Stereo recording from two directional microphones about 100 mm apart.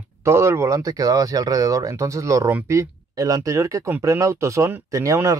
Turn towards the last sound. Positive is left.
turn(degrees=-30)  # may be behind; listen again after turning